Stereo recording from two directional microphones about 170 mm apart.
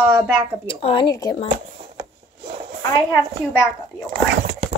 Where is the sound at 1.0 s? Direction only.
20° left (ahead or behind).